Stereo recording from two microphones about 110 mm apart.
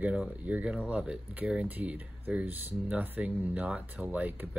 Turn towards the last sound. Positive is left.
turn(degrees=-15)  # may be behind; listen again after turning